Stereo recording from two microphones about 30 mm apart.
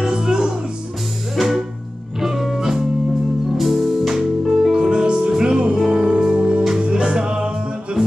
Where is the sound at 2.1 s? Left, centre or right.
Centre.